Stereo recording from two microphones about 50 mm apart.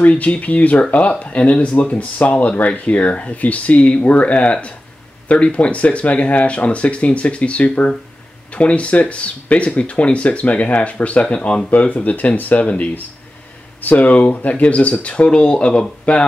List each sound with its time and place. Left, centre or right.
0.0 s speech: left
1.8 s speech: left